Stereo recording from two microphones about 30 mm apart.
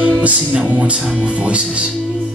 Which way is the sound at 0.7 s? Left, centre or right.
Right.